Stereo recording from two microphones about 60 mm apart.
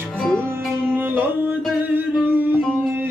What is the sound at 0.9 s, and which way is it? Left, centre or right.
Music, right.